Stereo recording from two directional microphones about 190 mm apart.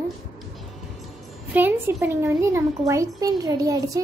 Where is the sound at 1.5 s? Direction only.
10° right (ahead or behind).